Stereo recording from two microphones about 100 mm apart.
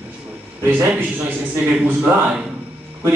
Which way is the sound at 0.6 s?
20° right (ahead or behind).